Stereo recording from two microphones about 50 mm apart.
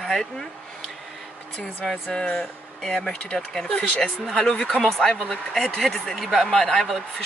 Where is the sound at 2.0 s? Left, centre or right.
Centre.